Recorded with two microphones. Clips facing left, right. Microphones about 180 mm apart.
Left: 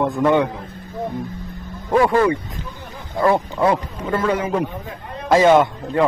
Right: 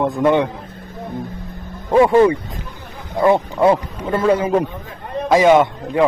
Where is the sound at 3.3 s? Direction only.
25° right (ahead or behind).